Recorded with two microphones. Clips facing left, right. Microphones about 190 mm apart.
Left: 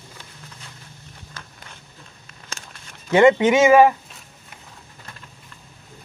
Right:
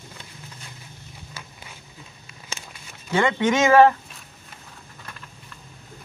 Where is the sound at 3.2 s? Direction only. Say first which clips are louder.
Left 7 dB; 15° left (ahead or behind).